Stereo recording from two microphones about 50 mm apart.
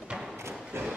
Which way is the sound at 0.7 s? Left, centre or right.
Right.